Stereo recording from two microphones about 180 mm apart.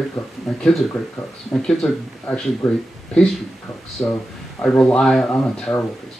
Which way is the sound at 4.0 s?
10° left (ahead or behind).